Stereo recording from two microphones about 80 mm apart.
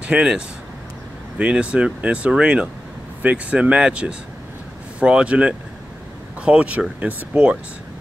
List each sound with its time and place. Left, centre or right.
0.0 s speech: centre
1.4 s speech: centre